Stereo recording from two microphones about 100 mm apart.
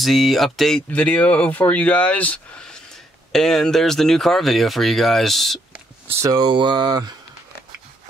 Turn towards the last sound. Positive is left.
turn(degrees=-45)  # may be behind; listen again after turning